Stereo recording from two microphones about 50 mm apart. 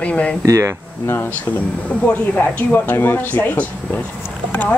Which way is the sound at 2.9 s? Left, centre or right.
Left.